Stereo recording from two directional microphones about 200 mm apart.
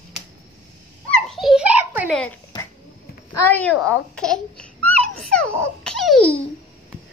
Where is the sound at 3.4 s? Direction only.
10° left (ahead or behind).